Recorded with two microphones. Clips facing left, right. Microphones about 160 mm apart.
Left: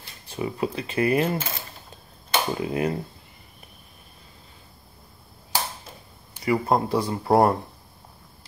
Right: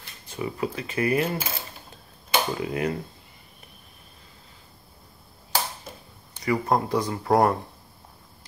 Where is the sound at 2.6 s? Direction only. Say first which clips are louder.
Left 2 dB; 30° left (ahead or behind).